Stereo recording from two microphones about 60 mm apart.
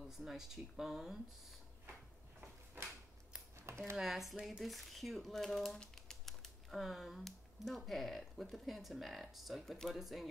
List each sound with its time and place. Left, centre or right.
0.2 s speech: centre
3.5 s a sound: right
3.9 s speech: centre